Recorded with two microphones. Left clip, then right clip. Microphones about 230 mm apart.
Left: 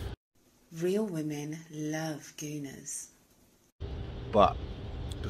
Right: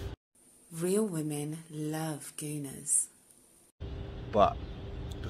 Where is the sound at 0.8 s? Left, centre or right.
Centre.